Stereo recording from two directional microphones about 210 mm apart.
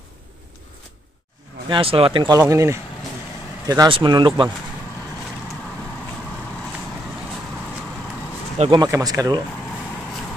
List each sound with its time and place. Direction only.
1.7 s speech: 25° right (ahead or behind)
8.5 s speech: 20° right (ahead or behind)